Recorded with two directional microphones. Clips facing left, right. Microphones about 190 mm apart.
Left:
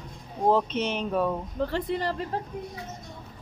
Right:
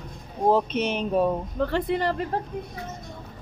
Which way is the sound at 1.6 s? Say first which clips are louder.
Right 3 dB; 60° right (ahead or behind).